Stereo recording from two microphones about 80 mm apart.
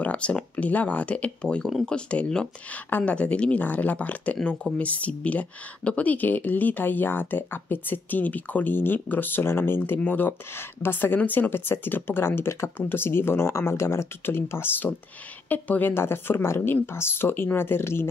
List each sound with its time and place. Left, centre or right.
0.0 s speech: centre